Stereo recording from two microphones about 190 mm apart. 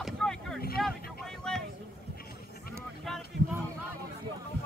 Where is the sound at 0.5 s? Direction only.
55° left (ahead or behind).